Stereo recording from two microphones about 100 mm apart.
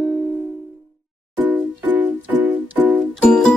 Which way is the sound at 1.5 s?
15° right (ahead or behind).